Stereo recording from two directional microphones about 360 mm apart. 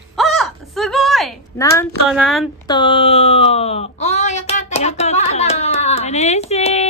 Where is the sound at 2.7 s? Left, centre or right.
Centre.